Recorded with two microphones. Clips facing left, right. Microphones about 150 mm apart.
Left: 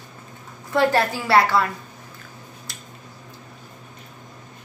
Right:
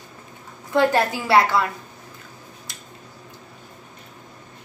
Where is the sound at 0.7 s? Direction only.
20° right (ahead or behind).